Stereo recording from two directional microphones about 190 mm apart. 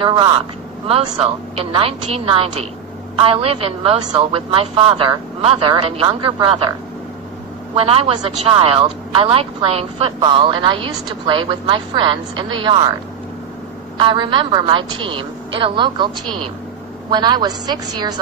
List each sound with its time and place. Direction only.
0.0 s speech: 25° right (ahead or behind)
7.7 s speech: 30° right (ahead or behind)
13.9 s speech: 25° right (ahead or behind)
17.1 s speech: 20° right (ahead or behind)